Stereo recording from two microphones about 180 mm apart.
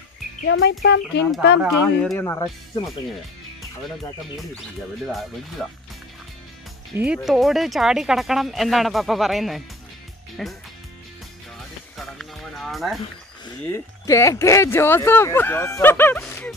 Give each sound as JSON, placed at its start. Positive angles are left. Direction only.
{"t": 0.5, "sound": "speech", "side_deg": 90}
{"t": 0.8, "sound": "speech", "side_deg": 70}
{"t": 1.6, "sound": "speech", "side_deg": 0}
{"t": 2.1, "sound": "speech", "side_deg": 15}
{"t": 5.0, "sound": "speech", "side_deg": 0}
{"t": 6.9, "sound": "speech", "side_deg": -15}
{"t": 7.2, "sound": "speech", "side_deg": 0}
{"t": 12.0, "sound": "music", "side_deg": 0}
{"t": 13.7, "sound": "speech", "side_deg": 15}